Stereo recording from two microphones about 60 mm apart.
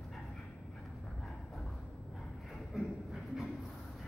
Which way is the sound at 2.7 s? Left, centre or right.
Centre.